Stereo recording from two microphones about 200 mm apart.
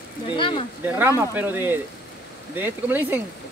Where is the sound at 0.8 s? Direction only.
10° right (ahead or behind).